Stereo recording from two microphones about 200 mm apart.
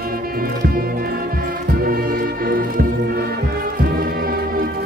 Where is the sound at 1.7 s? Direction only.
45° right (ahead or behind).